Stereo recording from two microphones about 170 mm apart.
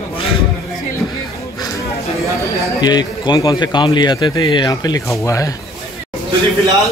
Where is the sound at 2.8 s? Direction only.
25° left (ahead or behind).